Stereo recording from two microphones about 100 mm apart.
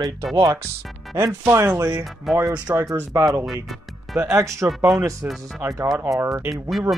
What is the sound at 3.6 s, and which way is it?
Music, 10° right (ahead or behind).